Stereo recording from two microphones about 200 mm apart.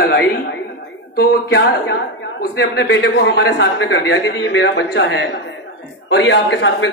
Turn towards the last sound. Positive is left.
turn(degrees=65)  # may be behind; listen again after turning